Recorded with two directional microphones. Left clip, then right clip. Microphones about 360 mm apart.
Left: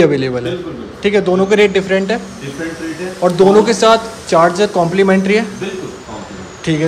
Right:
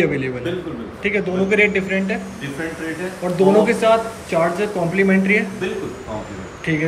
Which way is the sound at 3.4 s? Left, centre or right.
Centre.